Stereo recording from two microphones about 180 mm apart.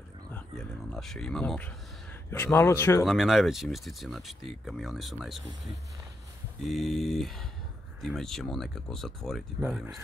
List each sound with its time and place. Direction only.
0.3 s a sound: 5° left (ahead or behind)
2.3 s a man's voice: 10° left (ahead or behind)
3.1 s speech: centre (ahead or behind)
6.6 s speech: centre (ahead or behind)